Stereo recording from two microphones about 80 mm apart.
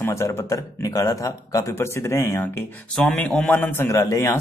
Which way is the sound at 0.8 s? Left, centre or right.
Left.